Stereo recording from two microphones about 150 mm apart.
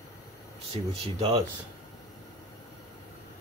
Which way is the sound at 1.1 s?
35° right (ahead or behind).